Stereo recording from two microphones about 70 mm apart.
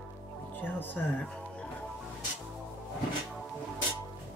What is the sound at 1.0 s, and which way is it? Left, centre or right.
Speech, centre.